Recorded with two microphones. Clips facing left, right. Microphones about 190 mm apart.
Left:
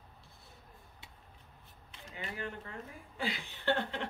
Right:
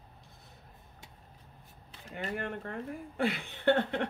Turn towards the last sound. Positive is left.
turn(degrees=-60)  # may be behind; listen again after turning